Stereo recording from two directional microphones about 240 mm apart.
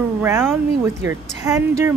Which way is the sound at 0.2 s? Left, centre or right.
Centre.